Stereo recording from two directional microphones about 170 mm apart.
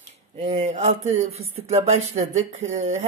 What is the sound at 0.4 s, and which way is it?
Speech, 45° right (ahead or behind).